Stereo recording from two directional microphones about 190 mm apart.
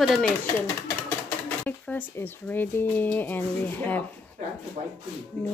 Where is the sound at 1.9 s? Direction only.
10° left (ahead or behind).